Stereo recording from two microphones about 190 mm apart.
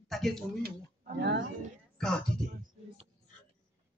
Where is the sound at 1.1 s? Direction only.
65° right (ahead or behind).